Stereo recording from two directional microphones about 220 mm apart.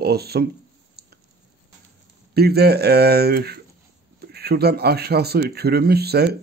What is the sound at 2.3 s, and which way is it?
Speech, 45° right (ahead or behind).